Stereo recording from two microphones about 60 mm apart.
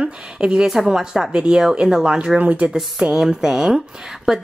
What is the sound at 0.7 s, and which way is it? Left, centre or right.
A woman's voice, centre.